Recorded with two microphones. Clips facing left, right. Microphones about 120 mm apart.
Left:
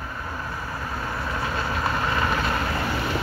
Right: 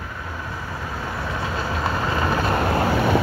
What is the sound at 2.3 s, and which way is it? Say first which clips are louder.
Vehicle: right 3 dB; 30° right (ahead or behind).